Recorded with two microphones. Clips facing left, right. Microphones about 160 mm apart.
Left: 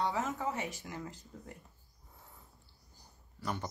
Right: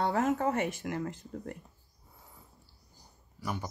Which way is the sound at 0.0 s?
55° right (ahead or behind).